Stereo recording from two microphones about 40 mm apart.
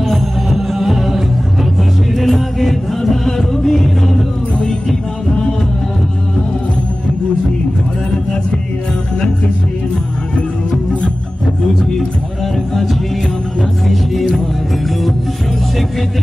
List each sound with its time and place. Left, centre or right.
0.5 s music: centre
8.1 s music: left
11.8 s music: centre
13.8 s music: centre